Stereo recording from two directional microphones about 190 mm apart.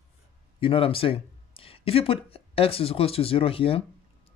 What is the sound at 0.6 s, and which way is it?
Speech, 30° left (ahead or behind).